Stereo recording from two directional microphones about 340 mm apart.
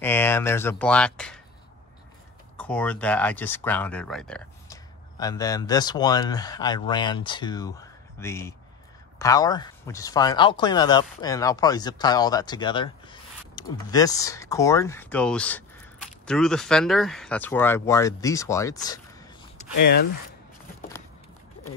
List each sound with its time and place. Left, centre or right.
0.0 s speech: centre
2.5 s speech: centre
19.8 s speech: left